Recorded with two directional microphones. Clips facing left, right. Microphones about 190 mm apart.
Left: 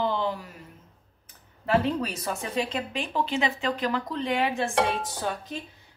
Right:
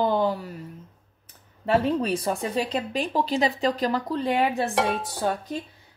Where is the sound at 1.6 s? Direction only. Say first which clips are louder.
Right 3 dB; 30° right (ahead or behind).